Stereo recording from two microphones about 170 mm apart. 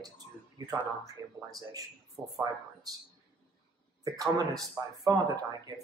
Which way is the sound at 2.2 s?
5° right (ahead or behind).